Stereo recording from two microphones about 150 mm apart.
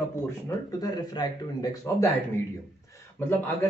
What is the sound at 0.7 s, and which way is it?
Speech, 25° left (ahead or behind).